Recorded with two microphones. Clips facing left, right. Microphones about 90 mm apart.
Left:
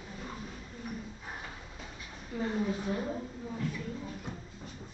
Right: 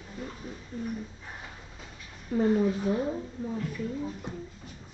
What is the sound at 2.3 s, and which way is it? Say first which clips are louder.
Speech: right 9 dB; 50° right (ahead or behind).